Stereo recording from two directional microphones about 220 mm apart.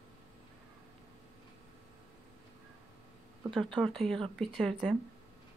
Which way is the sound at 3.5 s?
Centre (ahead or behind).